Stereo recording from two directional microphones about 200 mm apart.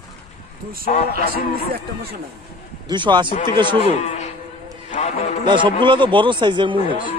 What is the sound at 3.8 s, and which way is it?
A man's voice, 30° left (ahead or behind).